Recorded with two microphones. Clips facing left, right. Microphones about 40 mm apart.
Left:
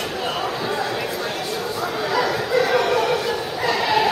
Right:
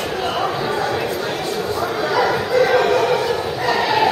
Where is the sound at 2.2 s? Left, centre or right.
Centre.